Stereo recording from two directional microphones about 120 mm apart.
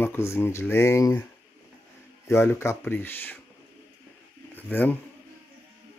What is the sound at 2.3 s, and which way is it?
Speech, 20° left (ahead or behind).